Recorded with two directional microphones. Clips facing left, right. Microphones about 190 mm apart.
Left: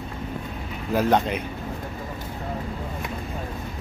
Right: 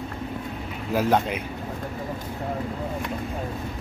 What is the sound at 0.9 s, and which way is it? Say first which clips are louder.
Speech: left 1 dB; 5° right (ahead or behind).